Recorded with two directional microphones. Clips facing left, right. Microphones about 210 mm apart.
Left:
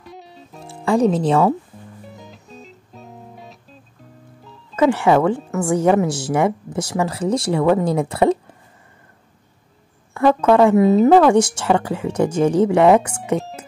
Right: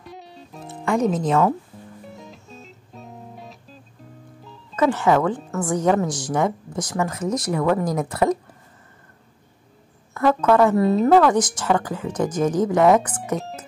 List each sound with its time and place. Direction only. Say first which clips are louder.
0.0 s music: left 1 dB; centre (ahead or behind)
0.8 s speech: left 4 dB; 30° left (ahead or behind)
2.0 s music: even; centre (ahead or behind)
4.8 s a woman's voice: left 3 dB; 15° left (ahead or behind)
6.3 s a woman's voice: left 3 dB; 25° left (ahead or behind)
10.1 s speech: left 3 dB; 25° left (ahead or behind)
10.8 s a woman's voice: left 5 dB; centre (ahead or behind)
11.1 s a woman's voice: left 4 dB; 25° left (ahead or behind)